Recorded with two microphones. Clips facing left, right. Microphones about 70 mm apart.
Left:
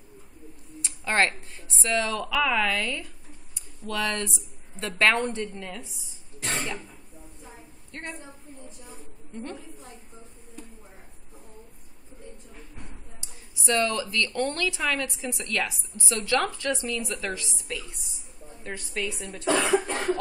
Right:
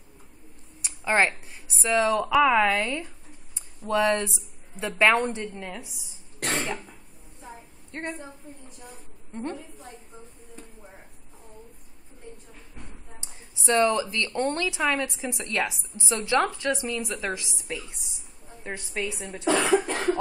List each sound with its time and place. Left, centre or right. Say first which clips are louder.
0.7 s a woman's voice: right 1 dB; centre
6.4 s cough: right 3 dB; right
7.9 s a woman's voice: right 4 dB; right
9.3 s speech: right 4 dB; right
13.2 s speech: right 2 dB; right
19.6 s cough: right 2 dB; centre